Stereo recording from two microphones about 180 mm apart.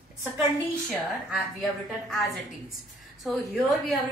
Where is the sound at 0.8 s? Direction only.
Centre (ahead or behind).